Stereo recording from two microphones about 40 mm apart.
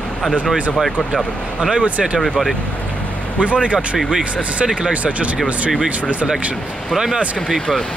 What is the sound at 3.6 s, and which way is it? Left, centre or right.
Speech, right.